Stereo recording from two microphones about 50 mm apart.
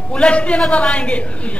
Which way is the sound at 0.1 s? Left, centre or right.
Left.